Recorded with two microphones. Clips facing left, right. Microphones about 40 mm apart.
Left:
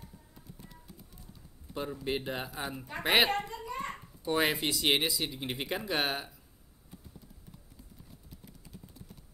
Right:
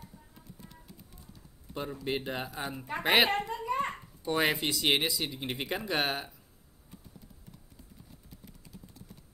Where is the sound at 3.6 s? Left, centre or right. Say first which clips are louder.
Right 6 dB; right.